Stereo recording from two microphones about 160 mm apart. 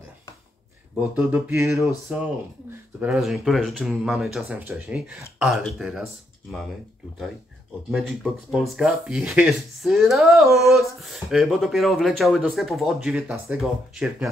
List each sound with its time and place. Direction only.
1.1 s mantra: 15° right (ahead or behind)
3.0 s speech: centre (ahead or behind)
7.9 s speech: centre (ahead or behind)